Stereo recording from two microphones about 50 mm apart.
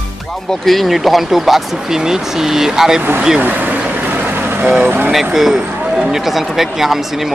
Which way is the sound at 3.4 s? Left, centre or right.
Right.